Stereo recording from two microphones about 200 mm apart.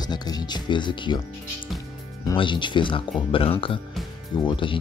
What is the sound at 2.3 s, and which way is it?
Speech, 25° left (ahead or behind).